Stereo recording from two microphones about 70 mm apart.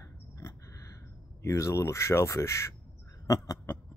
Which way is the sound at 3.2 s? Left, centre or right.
Left.